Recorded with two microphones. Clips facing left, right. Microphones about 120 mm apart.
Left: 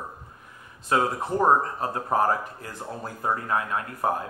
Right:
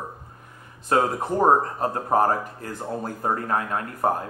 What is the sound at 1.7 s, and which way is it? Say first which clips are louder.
Speech: right 3 dB; 40° right (ahead or behind).